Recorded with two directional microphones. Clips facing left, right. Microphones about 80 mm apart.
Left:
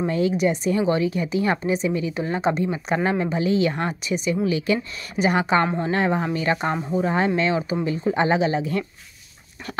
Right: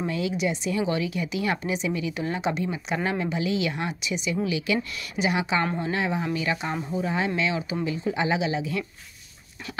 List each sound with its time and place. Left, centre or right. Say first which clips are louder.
0.0 s speech: left 6 dB; left